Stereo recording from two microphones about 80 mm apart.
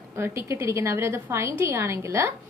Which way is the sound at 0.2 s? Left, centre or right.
Right.